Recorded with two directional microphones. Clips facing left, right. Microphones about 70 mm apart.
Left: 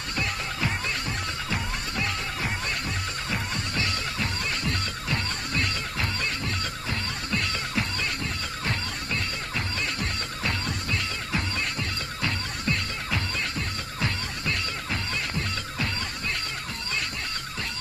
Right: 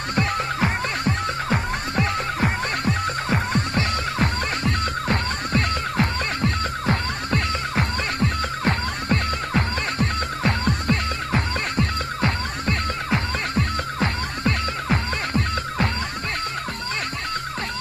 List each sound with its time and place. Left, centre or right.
0.1 s music: right